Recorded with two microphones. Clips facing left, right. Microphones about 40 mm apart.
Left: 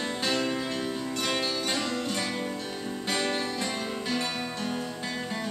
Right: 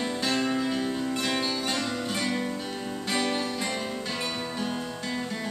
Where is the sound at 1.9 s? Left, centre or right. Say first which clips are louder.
Right 1 dB; centre.